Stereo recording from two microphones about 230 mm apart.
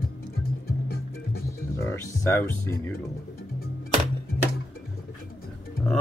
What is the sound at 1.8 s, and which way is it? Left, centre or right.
Speech, centre.